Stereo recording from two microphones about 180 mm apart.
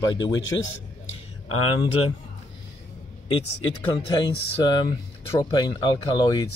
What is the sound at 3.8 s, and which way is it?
Speech, 25° left (ahead or behind).